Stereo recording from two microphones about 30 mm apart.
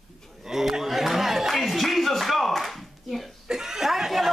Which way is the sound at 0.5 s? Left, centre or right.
Centre.